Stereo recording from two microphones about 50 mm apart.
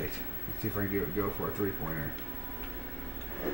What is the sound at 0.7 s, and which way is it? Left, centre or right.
Speech, centre.